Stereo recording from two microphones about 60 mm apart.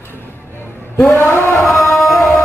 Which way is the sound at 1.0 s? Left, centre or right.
Left.